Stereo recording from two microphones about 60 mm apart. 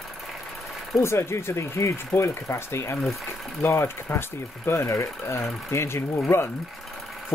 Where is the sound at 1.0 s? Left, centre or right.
Left.